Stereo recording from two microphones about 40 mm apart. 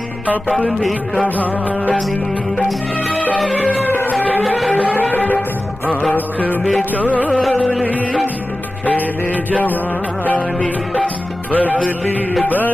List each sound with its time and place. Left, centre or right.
1.2 s music: left
4.1 s music: left
11.5 s music: left